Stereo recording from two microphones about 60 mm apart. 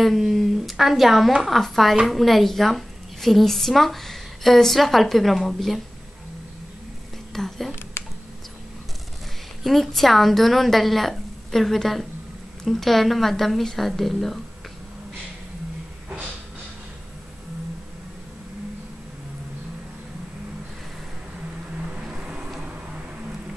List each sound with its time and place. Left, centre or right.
0.0 s a woman's voice: centre
7.3 s a woman's voice: centre
9.6 s a woman's voice: centre
21.9 s vehicle: centre